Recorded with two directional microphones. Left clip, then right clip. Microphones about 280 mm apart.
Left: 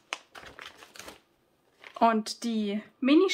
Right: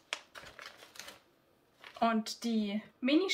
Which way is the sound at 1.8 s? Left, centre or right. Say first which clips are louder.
Left 7 dB; centre.